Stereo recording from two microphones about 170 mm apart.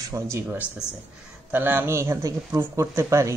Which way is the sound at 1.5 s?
10° right (ahead or behind).